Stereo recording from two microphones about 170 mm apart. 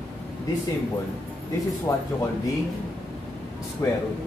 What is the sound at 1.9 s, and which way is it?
Speech, 15° left (ahead or behind).